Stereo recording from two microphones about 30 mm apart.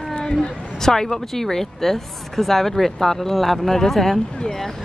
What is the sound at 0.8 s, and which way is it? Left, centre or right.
Speech, centre.